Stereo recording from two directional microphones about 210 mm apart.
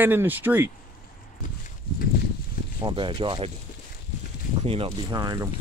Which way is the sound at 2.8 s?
25° right (ahead or behind).